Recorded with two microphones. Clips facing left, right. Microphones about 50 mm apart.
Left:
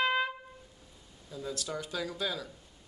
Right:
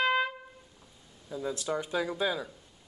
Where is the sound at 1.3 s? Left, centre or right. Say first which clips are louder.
Right 5 dB; right.